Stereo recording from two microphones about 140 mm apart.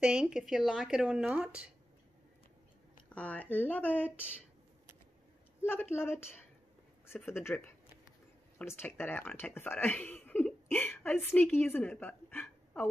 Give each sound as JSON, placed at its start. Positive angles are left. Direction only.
{"t": 0.0, "sound": "speech", "side_deg": -5}
{"t": 3.2, "sound": "speech", "side_deg": 10}
{"t": 5.7, "sound": "speech", "side_deg": 15}